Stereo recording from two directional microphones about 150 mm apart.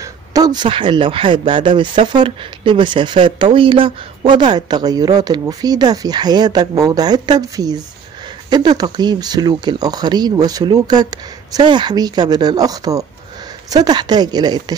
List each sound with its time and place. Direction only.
0.0 s speech: 25° right (ahead or behind)